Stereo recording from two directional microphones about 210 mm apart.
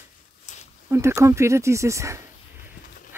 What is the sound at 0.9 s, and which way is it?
Speech, 15° right (ahead or behind).